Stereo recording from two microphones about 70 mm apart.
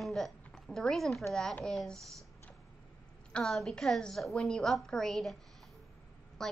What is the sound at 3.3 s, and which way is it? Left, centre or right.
A woman's voice, centre.